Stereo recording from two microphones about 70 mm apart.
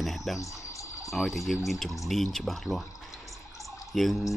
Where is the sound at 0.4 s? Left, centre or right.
Left.